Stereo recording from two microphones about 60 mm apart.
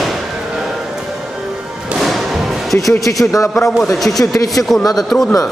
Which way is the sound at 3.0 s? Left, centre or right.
Left.